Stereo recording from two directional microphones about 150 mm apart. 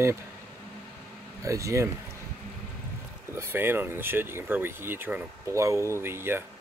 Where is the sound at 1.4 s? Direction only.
20° right (ahead or behind).